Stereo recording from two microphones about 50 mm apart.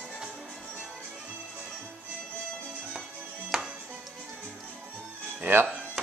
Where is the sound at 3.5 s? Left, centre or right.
Centre.